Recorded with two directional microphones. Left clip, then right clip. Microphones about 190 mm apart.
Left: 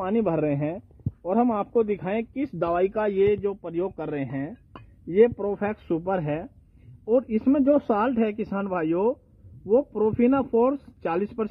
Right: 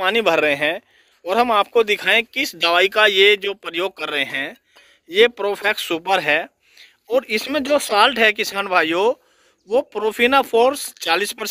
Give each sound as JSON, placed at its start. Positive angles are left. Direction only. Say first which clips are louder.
{"t": 0.0, "sound": "speech", "louder": "right 8 dB", "side_deg": -15}